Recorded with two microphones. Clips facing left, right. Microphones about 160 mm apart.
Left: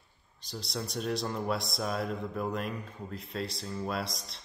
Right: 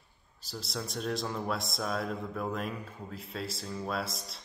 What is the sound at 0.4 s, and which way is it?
Speech, 5° right (ahead or behind).